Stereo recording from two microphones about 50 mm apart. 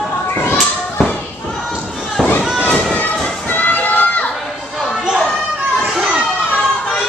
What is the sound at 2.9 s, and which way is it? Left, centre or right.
Music, left.